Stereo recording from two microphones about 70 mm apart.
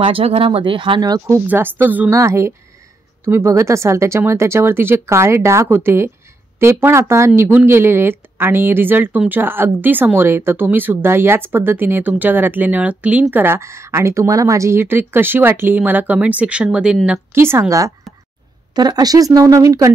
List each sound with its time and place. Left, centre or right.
1.5 s speech: right
2.0 s speech: right
13.6 s speech: right; by 17.2 s centre
17.3 s speech: right
18.8 s speech: right